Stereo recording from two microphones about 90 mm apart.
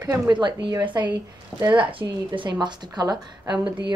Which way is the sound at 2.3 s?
60° right (ahead or behind).